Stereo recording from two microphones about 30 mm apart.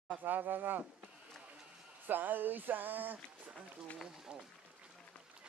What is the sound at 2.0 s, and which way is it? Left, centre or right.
Speech, right.